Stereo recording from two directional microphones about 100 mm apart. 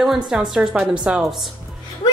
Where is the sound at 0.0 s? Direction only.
5° right (ahead or behind).